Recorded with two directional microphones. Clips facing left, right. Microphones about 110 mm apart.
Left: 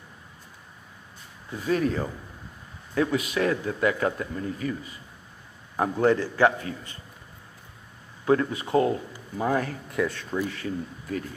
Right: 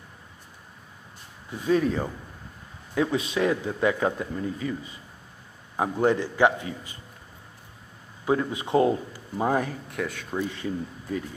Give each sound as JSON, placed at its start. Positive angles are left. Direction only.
{"t": 1.7, "sound": "a man's voice", "side_deg": -25}
{"t": 8.3, "sound": "a man's voice", "side_deg": -15}
{"t": 9.8, "sound": "speech", "side_deg": 0}
{"t": 10.3, "sound": "a man's voice", "side_deg": -20}